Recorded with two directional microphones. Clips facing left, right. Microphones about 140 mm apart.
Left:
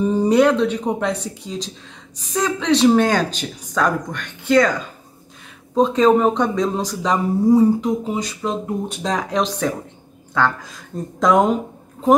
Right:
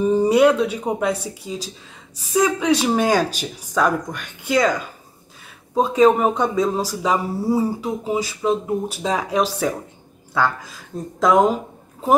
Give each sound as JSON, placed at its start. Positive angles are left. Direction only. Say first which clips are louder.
{"t": 0.0, "sound": "speech", "louder": "even", "side_deg": -10}
{"t": 5.8, "sound": "speech", "louder": "left 1 dB", "side_deg": -10}